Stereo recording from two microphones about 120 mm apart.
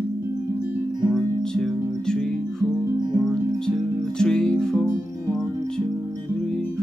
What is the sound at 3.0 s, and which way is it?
Music, 35° right (ahead or behind).